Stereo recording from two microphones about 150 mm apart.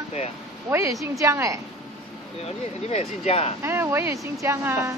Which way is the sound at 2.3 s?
45° left (ahead or behind).